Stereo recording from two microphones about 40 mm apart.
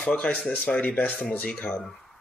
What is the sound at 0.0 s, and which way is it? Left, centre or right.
Speech, left.